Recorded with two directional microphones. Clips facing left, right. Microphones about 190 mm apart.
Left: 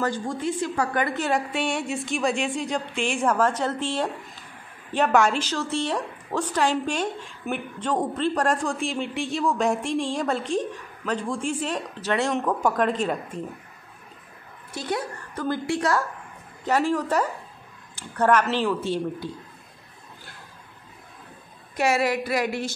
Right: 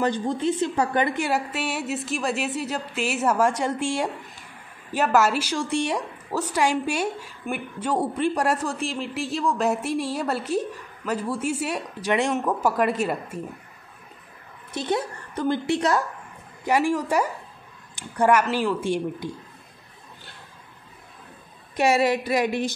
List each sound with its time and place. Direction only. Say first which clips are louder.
0.0 s a woman's voice: right 3 dB; 20° right (ahead or behind)
1.1 s a woman's voice: even; 10° right (ahead or behind)
14.7 s a woman's voice: right 3 dB; 25° right (ahead or behind)
21.7 s a woman's voice: right 2 dB; 20° right (ahead or behind)